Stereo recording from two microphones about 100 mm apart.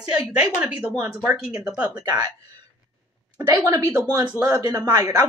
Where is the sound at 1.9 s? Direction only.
45° right (ahead or behind).